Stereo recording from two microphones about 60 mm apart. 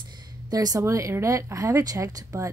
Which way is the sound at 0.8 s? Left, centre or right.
Right.